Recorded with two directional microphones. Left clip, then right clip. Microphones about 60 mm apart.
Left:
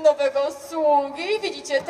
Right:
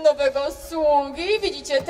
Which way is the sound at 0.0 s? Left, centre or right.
Right.